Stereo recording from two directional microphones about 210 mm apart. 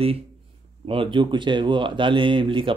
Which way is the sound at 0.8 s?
25° right (ahead or behind).